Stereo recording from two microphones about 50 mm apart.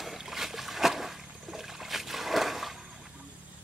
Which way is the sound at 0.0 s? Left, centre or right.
Centre.